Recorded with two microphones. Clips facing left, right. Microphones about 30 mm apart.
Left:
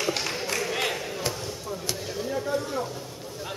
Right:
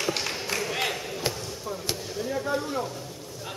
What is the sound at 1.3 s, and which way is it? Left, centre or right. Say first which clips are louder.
Basketball bounce: left 1 dB; centre.